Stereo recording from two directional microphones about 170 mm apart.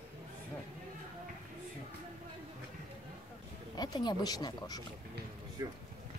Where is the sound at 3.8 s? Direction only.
25° left (ahead or behind).